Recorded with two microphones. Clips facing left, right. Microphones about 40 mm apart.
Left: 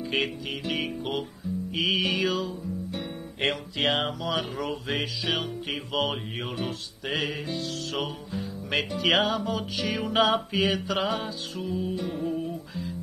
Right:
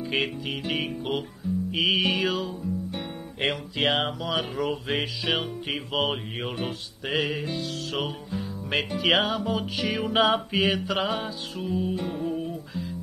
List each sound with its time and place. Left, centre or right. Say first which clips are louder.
0.1 s music: right 1 dB; centre
1.7 s music: right 2 dB; centre
10.5 s mantra: right 1 dB; centre
10.9 s music: right 1 dB; centre